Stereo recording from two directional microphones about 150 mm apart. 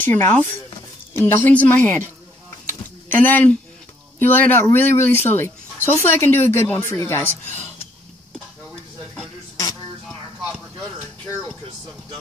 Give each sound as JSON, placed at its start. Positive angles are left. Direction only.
{"t": 0.0, "sound": "speech", "side_deg": 15}
{"t": 3.1, "sound": "speech", "side_deg": 10}